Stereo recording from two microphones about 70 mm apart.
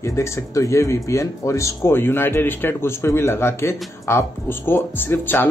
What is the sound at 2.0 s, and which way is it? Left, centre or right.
A man's voice, left.